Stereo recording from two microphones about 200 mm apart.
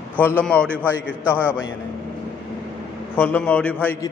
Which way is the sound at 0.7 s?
10° right (ahead or behind).